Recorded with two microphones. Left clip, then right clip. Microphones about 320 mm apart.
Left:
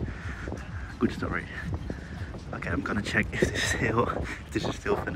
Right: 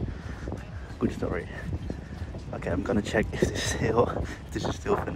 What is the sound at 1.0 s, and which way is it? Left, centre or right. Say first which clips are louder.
Speech: even; centre.